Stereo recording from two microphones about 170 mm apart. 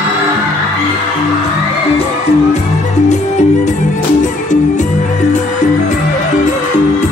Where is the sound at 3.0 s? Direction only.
45° left (ahead or behind).